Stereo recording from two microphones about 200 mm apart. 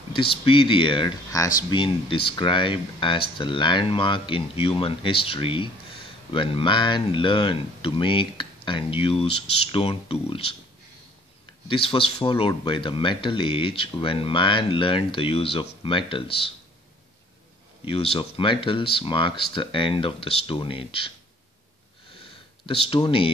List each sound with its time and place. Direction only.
0.1 s speech: 25° left (ahead or behind)
11.6 s speech: 25° left (ahead or behind)
17.8 s speech: 30° left (ahead or behind)
22.7 s speech: 25° left (ahead or behind)